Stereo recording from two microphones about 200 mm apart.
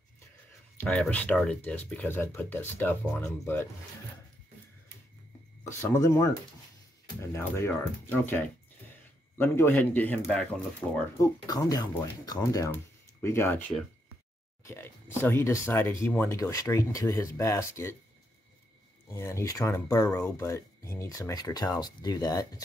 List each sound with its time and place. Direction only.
0.8 s speech: 5° left (ahead or behind)
5.7 s speech: 15° left (ahead or behind)
11.1 s speech: 20° left (ahead or behind)
19.0 s speech: 15° left (ahead or behind)